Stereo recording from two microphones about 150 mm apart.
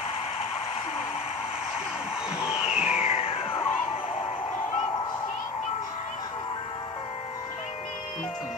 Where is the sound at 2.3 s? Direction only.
5° right (ahead or behind).